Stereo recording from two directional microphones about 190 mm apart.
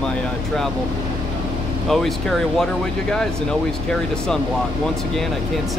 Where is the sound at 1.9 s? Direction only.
Centre (ahead or behind).